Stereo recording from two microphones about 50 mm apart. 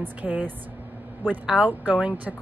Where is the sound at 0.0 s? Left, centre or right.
Right.